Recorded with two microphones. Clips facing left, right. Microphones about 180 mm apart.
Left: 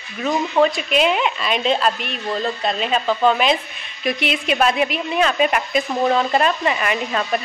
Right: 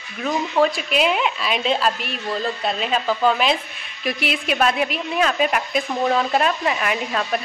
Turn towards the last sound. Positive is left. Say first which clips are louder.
# left 2 dB
turn(degrees=0)  # may be behind; listen again after turning